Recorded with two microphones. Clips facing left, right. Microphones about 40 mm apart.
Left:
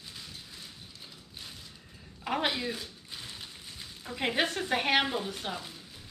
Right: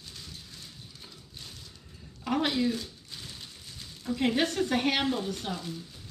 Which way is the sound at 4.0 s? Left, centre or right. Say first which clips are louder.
Right 3 dB; centre.